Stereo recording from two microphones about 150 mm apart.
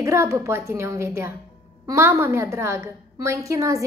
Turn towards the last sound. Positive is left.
turn(degrees=-20)  # may be behind; listen again after turning